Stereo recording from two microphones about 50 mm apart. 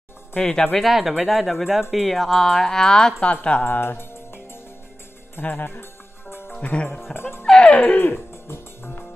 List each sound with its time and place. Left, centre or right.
0.4 s speech: centre
0.7 s speech: centre
3.6 s music: left
5.5 s music: left
6.6 s music: left
6.9 s speech: centre
7.2 s music: left
7.4 s music: centre
8.0 s music: left